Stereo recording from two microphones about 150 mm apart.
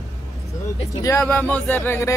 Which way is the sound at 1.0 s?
20° left (ahead or behind).